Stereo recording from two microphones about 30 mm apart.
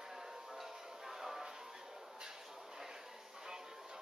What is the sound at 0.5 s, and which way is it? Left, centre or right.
Music, centre.